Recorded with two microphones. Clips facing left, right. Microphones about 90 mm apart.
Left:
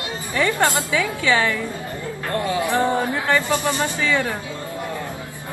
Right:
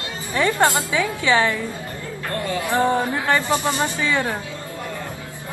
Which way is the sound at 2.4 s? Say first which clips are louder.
Left 3 dB; 20° left (ahead or behind).